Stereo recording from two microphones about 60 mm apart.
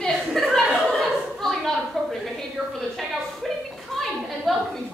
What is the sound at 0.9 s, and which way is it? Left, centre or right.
Chuckle, centre.